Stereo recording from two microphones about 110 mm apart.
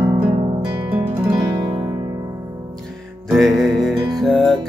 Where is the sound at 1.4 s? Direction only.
40° right (ahead or behind).